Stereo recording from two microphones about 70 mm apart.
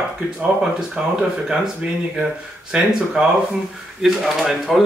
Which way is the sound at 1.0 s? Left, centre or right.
Centre.